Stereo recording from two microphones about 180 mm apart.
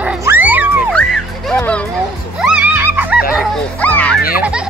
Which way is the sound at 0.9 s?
5° left (ahead or behind).